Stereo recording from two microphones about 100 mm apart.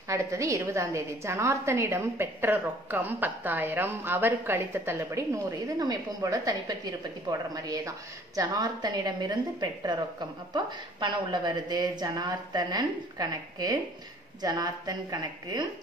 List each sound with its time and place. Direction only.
0.1 s a woman's voice: 30° right (ahead or behind)
5.8 s a woman's voice: 40° right (ahead or behind)